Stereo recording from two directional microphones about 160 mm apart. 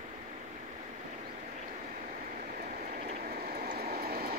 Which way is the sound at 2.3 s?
55° right (ahead or behind).